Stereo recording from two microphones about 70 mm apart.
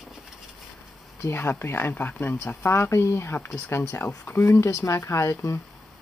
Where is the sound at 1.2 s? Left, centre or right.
Left.